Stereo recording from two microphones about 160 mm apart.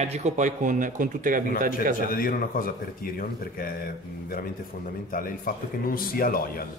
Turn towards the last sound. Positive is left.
turn(degrees=65)  # may be behind; listen again after turning